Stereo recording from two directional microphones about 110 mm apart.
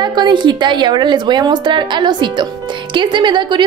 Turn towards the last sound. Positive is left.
turn(degrees=-45)  # may be behind; listen again after turning